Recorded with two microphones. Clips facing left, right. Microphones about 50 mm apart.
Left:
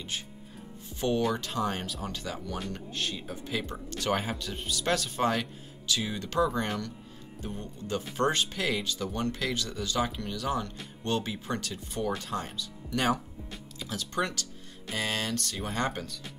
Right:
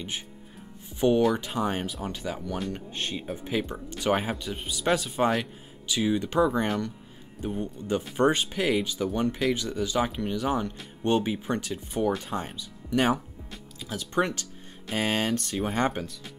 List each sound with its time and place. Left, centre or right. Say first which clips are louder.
0.8 s speech: right 6 dB; centre
13.5 s speech: right 2 dB; centre; by 15.9 s right
15.9 s speech: right 3 dB; centre